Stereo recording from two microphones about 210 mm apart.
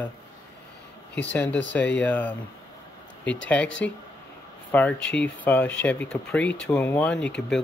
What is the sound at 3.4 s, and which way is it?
Speech, 5° left (ahead or behind).